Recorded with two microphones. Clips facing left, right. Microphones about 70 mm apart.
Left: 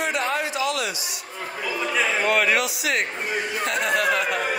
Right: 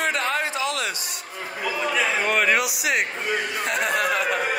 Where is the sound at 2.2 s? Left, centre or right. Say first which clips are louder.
Left 1 dB; centre.